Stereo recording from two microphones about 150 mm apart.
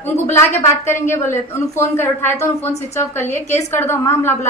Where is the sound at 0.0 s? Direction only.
15° left (ahead or behind).